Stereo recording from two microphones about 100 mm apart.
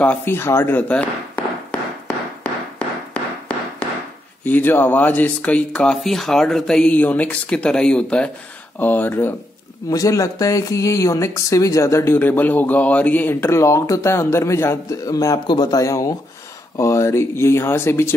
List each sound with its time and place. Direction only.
0.0 s speech: 20° left (ahead or behind)
3.5 s a sound: 15° left (ahead or behind)
4.5 s speech: 20° left (ahead or behind)
9.8 s speech: 35° left (ahead or behind)